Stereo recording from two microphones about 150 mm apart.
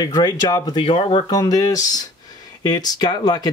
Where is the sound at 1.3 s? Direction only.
25° left (ahead or behind).